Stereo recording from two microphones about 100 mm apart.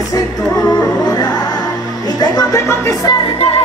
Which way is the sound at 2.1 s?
35° left (ahead or behind).